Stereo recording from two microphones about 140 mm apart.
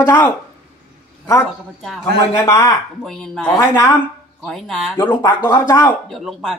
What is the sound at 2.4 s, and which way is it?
Speech, 20° left (ahead or behind).